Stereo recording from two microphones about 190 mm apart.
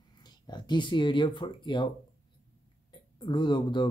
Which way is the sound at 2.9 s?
25° left (ahead or behind).